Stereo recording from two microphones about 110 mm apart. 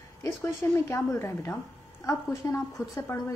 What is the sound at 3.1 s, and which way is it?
Speech, 20° left (ahead or behind).